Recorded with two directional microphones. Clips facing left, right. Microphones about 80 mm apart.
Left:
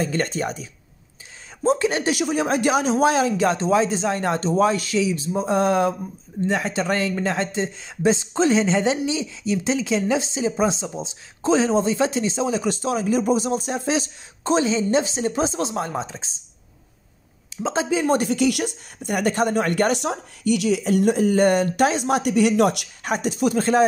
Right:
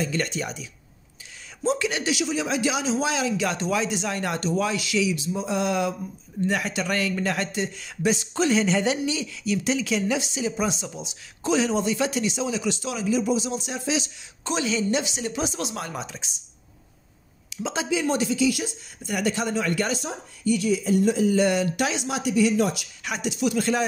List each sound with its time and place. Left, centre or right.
0.0 s speech: left
17.6 s speech: left
23.0 s speech: left